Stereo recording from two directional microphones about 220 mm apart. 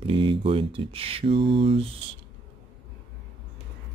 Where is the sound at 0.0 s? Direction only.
25° right (ahead or behind).